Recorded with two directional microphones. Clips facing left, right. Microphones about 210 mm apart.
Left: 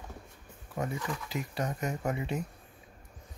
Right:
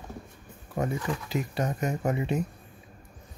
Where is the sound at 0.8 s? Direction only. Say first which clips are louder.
Right 5 dB; 25° right (ahead or behind).